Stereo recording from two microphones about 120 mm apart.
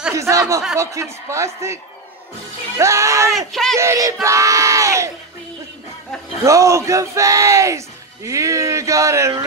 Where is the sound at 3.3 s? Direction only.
5° left (ahead or behind).